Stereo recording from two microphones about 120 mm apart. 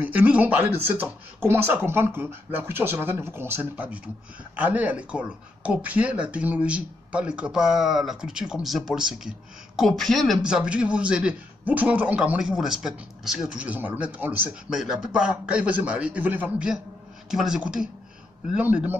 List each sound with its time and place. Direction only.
0.0 s a man's voice: 15° right (ahead or behind)